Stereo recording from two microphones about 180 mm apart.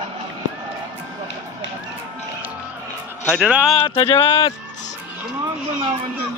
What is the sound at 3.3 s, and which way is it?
Speech, 5° right (ahead or behind).